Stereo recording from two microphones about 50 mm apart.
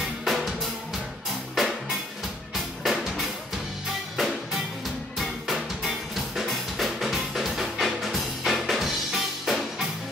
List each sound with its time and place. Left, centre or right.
0.0 s music: centre